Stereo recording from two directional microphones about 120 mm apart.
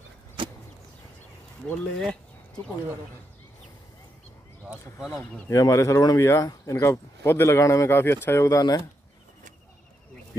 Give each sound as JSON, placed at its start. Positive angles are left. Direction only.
{"t": 1.7, "sound": "speech", "side_deg": 5}
{"t": 5.1, "sound": "speech", "side_deg": 25}